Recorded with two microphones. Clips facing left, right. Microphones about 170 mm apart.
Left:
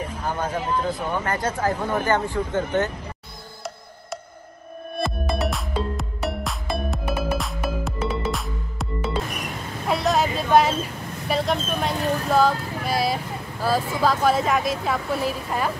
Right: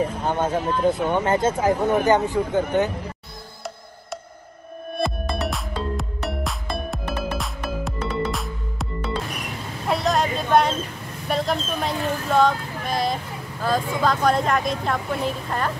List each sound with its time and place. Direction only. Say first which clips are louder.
0.2 s speech: right 4 dB; 25° right (ahead or behind)
5.0 s music: even; centre (ahead or behind)
9.8 s a sound: even; centre (ahead or behind)
11.2 s speech: even; centre (ahead or behind)